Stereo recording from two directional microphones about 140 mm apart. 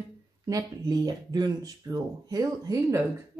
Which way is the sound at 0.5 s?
25° right (ahead or behind).